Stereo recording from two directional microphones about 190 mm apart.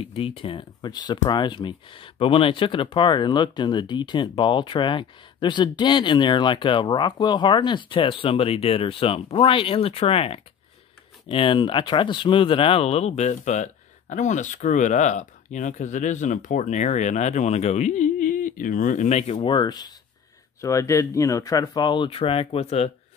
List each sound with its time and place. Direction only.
0.0 s speech: 30° left (ahead or behind)
19.3 s speech: 25° left (ahead or behind)